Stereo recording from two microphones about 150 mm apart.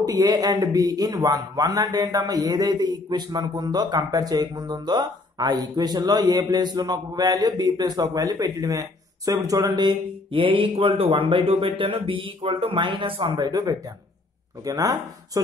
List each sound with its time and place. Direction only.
0.0 s a man's voice: 25° right (ahead or behind)